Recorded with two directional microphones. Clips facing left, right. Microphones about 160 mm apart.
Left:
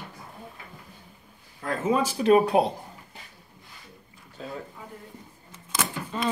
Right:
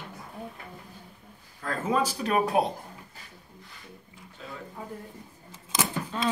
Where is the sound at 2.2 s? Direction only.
30° left (ahead or behind).